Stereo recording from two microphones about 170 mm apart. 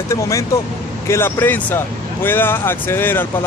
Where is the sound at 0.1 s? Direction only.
20° left (ahead or behind).